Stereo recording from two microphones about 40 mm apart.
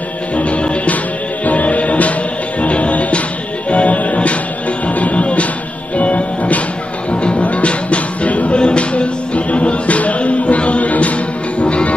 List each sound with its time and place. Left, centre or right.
0.4 s music: left